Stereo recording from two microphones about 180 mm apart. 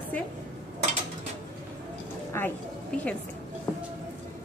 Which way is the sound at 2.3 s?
15° left (ahead or behind).